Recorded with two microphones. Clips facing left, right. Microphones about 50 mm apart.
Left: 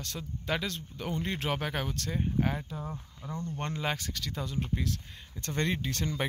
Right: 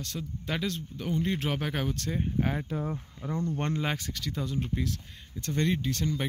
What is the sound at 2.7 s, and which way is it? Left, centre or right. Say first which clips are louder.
Speech: right 6 dB; right.